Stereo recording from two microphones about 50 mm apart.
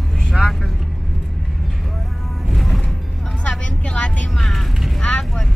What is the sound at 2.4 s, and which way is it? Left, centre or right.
Vehicle, centre.